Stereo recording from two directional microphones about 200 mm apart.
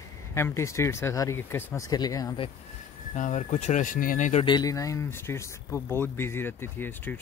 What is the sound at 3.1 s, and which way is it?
Speech, 35° left (ahead or behind).